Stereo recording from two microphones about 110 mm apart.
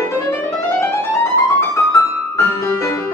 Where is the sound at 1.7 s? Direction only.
25° left (ahead or behind).